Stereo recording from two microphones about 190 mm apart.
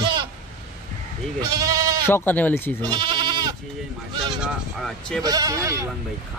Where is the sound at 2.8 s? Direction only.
20° right (ahead or behind).